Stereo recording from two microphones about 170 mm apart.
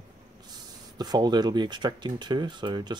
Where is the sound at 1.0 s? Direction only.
25° right (ahead or behind).